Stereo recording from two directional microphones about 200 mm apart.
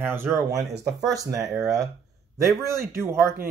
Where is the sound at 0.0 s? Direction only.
10° right (ahead or behind).